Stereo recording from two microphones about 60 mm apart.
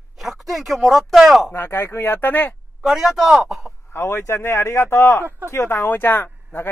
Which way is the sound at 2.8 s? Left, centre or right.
Centre.